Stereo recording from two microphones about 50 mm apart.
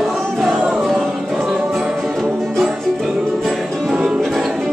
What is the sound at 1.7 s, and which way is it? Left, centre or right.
Music, centre.